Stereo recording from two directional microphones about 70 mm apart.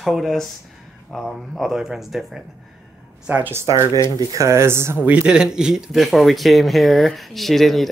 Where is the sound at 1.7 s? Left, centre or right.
Centre.